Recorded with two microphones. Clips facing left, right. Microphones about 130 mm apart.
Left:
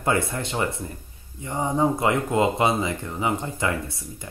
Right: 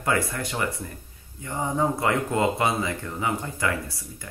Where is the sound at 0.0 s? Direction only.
25° left (ahead or behind).